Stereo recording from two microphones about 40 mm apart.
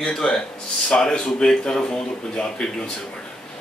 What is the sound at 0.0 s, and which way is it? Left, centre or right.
Speech, centre.